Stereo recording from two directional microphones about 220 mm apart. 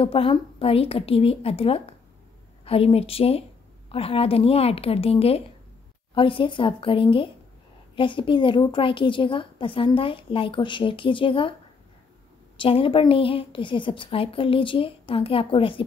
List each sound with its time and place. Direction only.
0.0 s a woman's voice: 25° left (ahead or behind)
12.5 s a woman's voice: 25° left (ahead or behind)